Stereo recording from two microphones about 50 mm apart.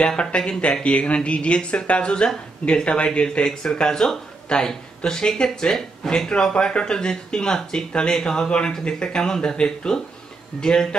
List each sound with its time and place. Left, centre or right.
0.0 s speech: left